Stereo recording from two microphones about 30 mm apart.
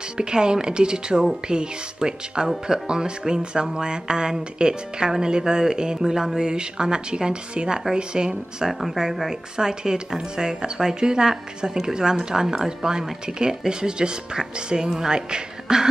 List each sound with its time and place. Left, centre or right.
0.2 s speech: right
8.5 s speech: centre
9.3 s speech: right